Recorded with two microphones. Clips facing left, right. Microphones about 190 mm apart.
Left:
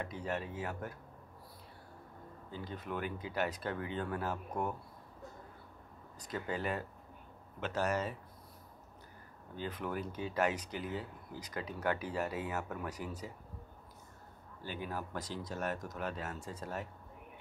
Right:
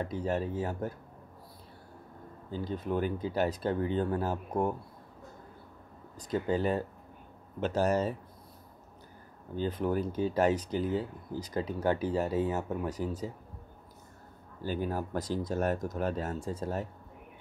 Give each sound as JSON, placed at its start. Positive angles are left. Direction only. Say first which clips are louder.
{"t": 0.0, "sound": "speech", "louder": "right 7 dB", "side_deg": -35}
{"t": 2.5, "sound": "speech", "louder": "right 9 dB", "side_deg": -35}
{"t": 6.3, "sound": "speech", "louder": "right 8 dB", "side_deg": -30}
{"t": 9.6, "sound": "speech", "louder": "right 9 dB", "side_deg": -35}
{"t": 14.6, "sound": "speech", "louder": "right 8 dB", "side_deg": -40}